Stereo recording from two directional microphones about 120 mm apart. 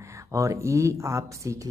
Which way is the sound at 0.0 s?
25° right (ahead or behind).